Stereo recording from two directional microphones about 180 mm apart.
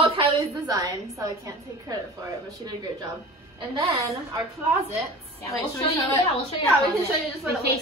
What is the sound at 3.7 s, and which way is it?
Speech, 15° right (ahead or behind).